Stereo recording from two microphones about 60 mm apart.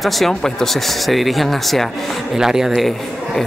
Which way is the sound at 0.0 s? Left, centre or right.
Centre.